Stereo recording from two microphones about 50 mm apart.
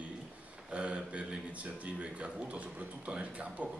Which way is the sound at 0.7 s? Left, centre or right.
Right.